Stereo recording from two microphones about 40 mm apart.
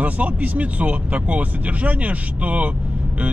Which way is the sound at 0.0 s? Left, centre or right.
Right.